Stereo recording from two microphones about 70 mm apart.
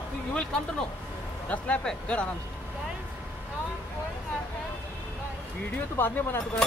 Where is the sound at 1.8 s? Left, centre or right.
Centre.